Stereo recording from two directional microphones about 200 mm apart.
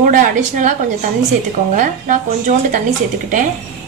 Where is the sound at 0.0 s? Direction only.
40° right (ahead or behind).